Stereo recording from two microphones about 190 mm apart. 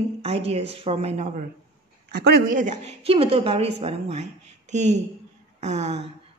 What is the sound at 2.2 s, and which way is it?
A woman's voice, 50° right (ahead or behind).